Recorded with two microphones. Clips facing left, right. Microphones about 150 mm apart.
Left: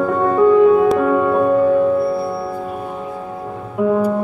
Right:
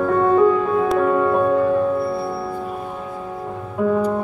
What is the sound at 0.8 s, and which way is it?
Music, centre (ahead or behind).